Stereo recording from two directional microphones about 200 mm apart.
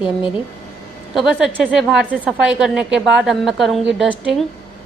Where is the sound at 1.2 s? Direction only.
Centre (ahead or behind).